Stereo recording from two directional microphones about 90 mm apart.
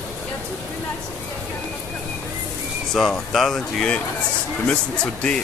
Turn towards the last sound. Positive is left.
turn(degrees=10)  # may be behind; listen again after turning